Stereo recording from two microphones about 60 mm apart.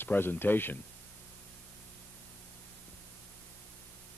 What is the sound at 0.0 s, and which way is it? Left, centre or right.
Speech, left.